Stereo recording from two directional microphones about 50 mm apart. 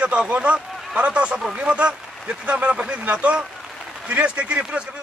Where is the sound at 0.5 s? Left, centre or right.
Centre.